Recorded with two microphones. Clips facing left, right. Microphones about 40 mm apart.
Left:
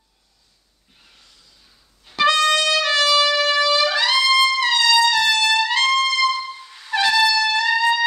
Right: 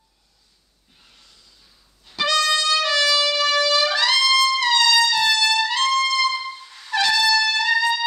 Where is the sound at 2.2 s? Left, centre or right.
Left.